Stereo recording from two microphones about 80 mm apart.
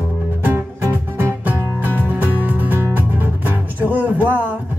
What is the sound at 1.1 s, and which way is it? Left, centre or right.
Music, right.